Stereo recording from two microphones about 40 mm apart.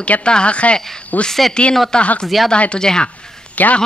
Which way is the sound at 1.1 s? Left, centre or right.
Left.